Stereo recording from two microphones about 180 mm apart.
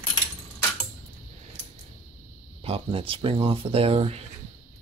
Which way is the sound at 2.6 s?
30° right (ahead or behind).